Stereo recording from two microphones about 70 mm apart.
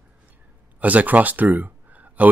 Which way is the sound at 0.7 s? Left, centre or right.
Right.